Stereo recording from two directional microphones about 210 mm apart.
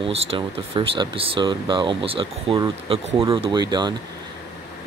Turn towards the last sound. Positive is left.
turn(degrees=-20)  # may be behind; listen again after turning